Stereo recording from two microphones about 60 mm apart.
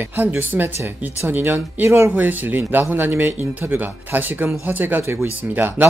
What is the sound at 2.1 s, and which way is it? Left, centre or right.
Speech, right.